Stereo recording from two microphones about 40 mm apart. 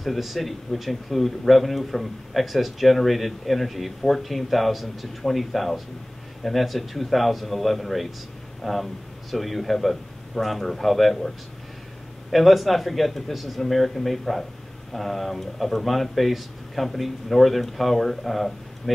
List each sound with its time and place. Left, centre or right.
0.0 s speech: centre